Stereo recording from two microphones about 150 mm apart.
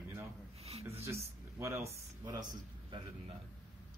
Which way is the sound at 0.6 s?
45° right (ahead or behind).